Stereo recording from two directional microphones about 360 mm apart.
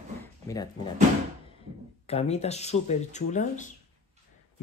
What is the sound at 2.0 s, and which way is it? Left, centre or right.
Speech, centre.